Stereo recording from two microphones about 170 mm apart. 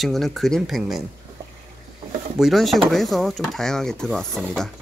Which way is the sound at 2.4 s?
Centre (ahead or behind).